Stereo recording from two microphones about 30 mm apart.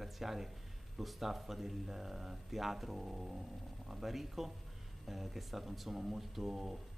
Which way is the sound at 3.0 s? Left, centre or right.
Right.